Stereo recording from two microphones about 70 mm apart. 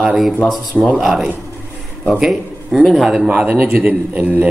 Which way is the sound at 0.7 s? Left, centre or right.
Right.